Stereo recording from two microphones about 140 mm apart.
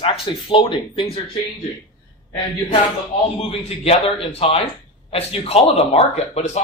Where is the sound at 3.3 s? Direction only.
45° left (ahead or behind).